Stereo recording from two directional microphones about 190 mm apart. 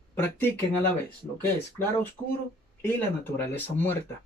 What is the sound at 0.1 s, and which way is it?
Speech, 10° left (ahead or behind).